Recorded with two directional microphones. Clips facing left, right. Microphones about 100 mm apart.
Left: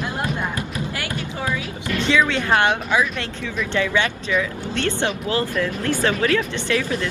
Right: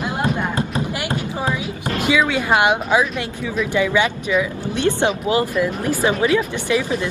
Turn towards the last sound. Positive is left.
turn(degrees=-15)  # may be behind; listen again after turning